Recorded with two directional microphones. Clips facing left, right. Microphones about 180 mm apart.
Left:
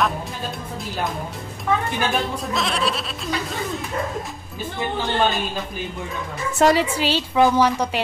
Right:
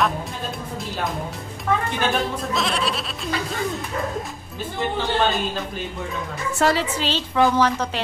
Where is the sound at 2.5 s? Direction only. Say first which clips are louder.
Left 2 dB; centre (ahead or behind).